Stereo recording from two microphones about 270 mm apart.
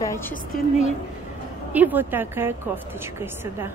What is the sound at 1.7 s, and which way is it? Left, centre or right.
A woman's voice, centre.